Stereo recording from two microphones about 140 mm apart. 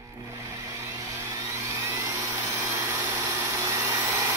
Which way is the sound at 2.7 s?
20° right (ahead or behind).